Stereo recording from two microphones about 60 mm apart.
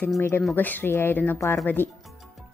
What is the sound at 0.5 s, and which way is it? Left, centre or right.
Speech, left.